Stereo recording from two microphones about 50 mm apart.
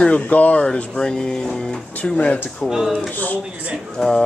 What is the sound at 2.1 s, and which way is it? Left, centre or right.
Speech, left.